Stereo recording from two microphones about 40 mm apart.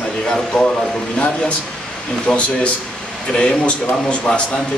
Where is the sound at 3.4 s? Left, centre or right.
Left.